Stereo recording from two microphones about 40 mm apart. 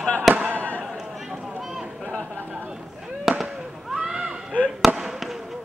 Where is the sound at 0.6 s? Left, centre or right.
Left.